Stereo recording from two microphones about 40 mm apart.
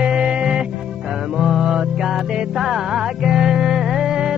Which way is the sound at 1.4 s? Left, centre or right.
Centre.